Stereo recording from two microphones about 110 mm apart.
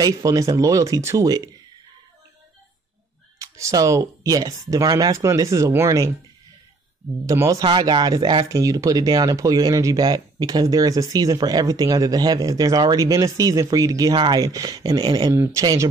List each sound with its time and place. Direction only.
0.0 s speech: 35° right (ahead or behind)
3.3 s speech: 30° right (ahead or behind)
7.2 s speech: 30° right (ahead or behind)
7.6 s speech: 45° right (ahead or behind)
8.5 s speech: 30° right (ahead or behind)
15.3 s speech: 25° right (ahead or behind)
15.6 s speech: 35° right (ahead or behind)